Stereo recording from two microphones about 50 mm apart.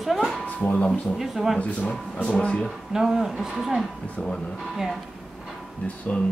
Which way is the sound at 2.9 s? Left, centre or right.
Centre.